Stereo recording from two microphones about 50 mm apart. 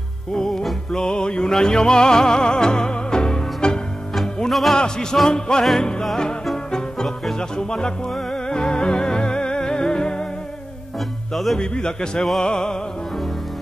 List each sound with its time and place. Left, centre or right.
0.5 s music: centre
0.9 s music: centre
4.5 s music: centre
4.7 s music: centre
5.1 s a man's voice: centre
6.4 s music: centre
11.3 s speech: centre
11.6 s a man's voice: centre